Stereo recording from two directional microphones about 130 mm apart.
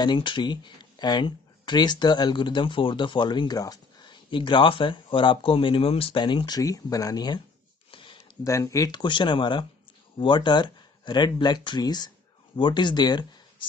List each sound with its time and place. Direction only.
0.0 s speech: 35° left (ahead or behind)
7.9 s a sound: 40° left (ahead or behind)
8.5 s speech: 25° left (ahead or behind)